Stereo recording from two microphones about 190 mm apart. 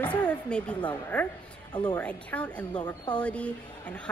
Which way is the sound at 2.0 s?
5° left (ahead or behind).